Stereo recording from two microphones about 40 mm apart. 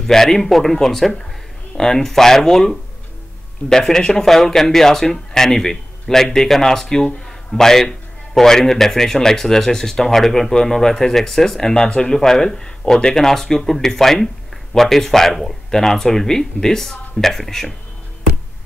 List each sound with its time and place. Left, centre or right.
0.0 s speech: centre
3.6 s speech: left
4.0 s a man's voice: centre